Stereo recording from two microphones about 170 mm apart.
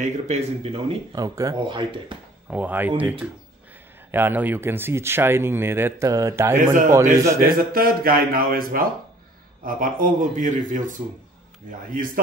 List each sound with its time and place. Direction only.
0.0 s speech: 40° right (ahead or behind)
1.1 s speech: 20° right (ahead or behind)
2.5 s speech: 10° right (ahead or behind)
6.5 s speech: 55° right (ahead or behind)
7.2 s speech: 15° right (ahead or behind)
7.4 s speech: 60° right (ahead or behind)